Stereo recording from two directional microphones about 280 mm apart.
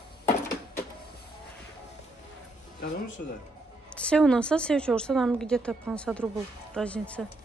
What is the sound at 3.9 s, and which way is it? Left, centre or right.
Speech, centre.